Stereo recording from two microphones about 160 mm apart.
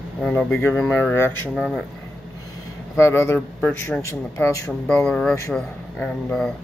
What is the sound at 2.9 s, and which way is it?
A man's voice, 15° left (ahead or behind).